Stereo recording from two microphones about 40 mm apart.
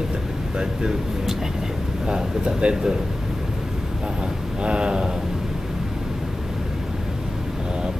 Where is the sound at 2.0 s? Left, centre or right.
Right.